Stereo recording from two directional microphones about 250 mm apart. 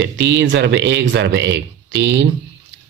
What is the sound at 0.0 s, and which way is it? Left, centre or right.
Speech, right.